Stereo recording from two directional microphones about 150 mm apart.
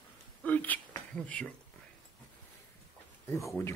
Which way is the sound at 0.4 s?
10° left (ahead or behind).